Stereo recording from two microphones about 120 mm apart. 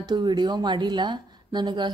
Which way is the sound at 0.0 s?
35° right (ahead or behind).